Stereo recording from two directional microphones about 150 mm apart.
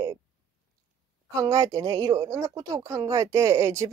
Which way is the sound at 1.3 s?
20° right (ahead or behind).